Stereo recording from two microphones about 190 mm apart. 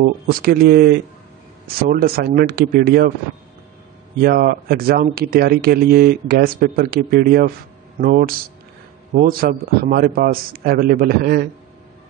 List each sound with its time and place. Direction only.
0.0 s speech: 55° right (ahead or behind)
4.2 s speech: 55° right (ahead or behind)